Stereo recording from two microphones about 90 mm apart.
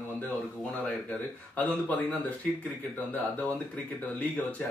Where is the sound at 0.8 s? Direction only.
15° left (ahead or behind).